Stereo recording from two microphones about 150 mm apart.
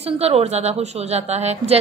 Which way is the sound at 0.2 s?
45° right (ahead or behind).